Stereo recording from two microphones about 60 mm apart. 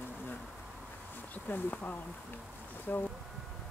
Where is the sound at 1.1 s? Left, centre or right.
Left.